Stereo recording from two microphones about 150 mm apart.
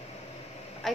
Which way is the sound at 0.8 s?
Centre (ahead or behind).